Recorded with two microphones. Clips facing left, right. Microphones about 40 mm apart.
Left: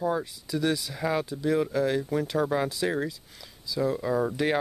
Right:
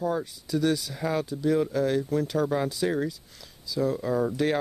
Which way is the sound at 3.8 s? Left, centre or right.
Centre.